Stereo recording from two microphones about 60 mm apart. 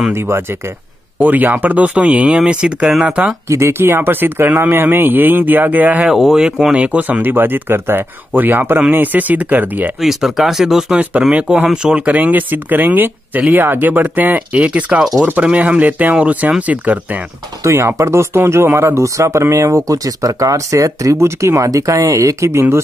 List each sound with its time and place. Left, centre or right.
1.2 s speech: right
3.4 s speech: right
6.0 s speech: centre; by 9.8 s right
10.0 s speech: centre
12.1 s speech: right
17.6 s speech: right
19.9 s speech: right
21.6 s speech: right